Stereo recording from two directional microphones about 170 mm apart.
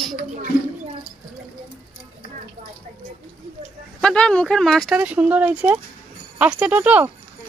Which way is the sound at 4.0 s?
5° left (ahead or behind).